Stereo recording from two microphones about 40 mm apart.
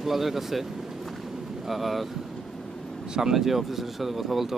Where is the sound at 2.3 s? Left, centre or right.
Centre.